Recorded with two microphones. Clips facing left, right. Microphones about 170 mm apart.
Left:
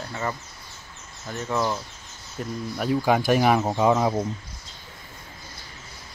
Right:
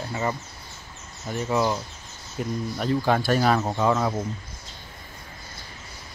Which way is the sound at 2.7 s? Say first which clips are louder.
Left 2 dB; 10° left (ahead or behind).